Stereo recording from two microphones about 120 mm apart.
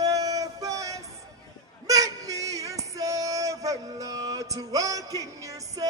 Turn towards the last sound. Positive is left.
turn(degrees=-30)  # may be behind; listen again after turning